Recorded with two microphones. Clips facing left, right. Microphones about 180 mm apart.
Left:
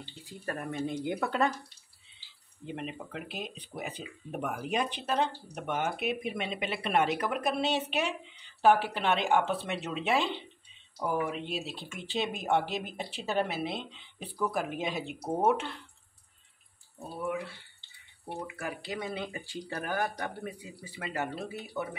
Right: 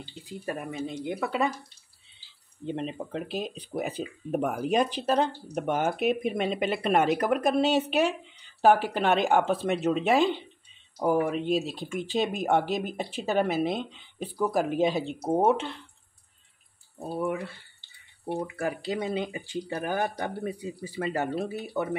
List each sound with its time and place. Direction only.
0.0 s speech: 15° right (ahead or behind)
2.6 s speech: 30° right (ahead or behind)
18.6 s speech: 25° right (ahead or behind)